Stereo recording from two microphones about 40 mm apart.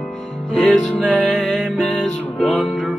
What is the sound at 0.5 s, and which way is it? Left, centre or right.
Music, left.